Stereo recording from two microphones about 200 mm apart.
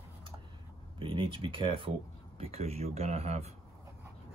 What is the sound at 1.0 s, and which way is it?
Speech, 25° right (ahead or behind).